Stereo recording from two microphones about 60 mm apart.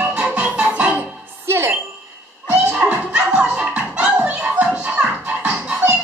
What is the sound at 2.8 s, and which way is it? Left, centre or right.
Music, right.